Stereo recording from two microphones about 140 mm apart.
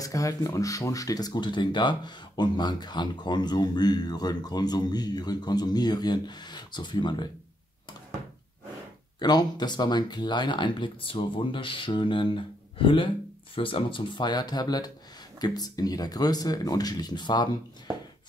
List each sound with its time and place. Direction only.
0.0 s speech: 25° left (ahead or behind)
9.2 s speech: 30° left (ahead or behind)